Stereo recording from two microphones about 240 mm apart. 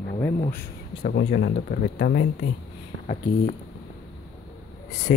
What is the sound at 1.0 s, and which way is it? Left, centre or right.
Speech, left.